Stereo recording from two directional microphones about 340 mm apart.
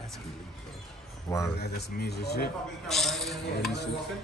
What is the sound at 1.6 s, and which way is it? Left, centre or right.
Speech, left.